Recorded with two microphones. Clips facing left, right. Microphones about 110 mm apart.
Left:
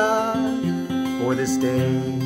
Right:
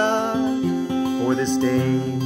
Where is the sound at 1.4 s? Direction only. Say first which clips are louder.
Right 1 dB; 10° left (ahead or behind).